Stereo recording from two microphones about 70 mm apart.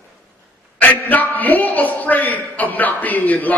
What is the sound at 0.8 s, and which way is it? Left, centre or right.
A man's voice, left.